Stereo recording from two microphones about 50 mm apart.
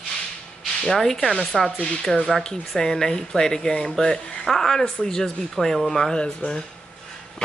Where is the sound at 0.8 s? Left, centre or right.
Centre.